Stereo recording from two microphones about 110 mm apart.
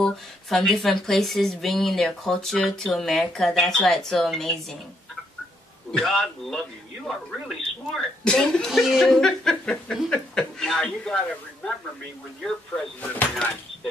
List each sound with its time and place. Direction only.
0.0 s a woman's voice: centre (ahead or behind)
5.9 s a woman's voice: 5° left (ahead or behind)
13.1 s speech: 15° left (ahead or behind)